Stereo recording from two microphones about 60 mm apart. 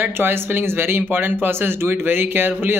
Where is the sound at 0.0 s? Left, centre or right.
Right.